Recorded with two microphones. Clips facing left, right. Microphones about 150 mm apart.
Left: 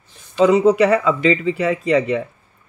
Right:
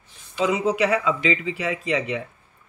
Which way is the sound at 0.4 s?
45° left (ahead or behind).